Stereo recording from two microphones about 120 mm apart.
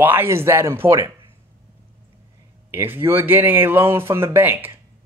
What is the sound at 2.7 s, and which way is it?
Speech, 20° right (ahead or behind).